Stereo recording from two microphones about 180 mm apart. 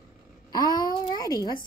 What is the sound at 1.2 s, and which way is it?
Speech, 20° left (ahead or behind).